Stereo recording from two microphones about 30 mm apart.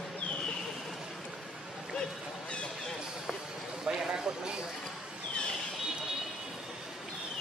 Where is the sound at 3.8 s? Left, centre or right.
Right.